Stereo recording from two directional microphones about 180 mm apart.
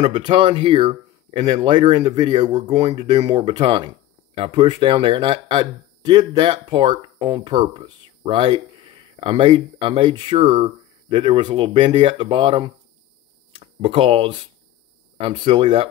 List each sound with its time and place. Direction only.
0.0 s speech: 25° right (ahead or behind)